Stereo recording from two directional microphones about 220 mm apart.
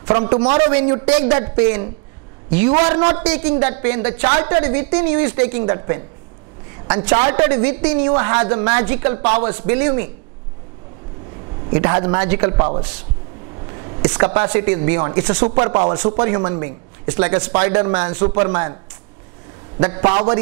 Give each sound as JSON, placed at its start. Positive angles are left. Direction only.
{"t": 0.0, "sound": "a man's voice", "side_deg": -25}
{"t": 3.5, "sound": "a man's voice", "side_deg": -15}
{"t": 7.2, "sound": "a man's voice", "side_deg": -20}
{"t": 11.8, "sound": "a man's voice", "side_deg": -20}
{"t": 14.1, "sound": "a man's voice", "side_deg": -20}
{"t": 19.8, "sound": "a man's voice", "side_deg": -20}